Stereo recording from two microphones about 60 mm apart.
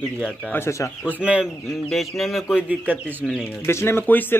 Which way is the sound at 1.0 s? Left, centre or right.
Centre.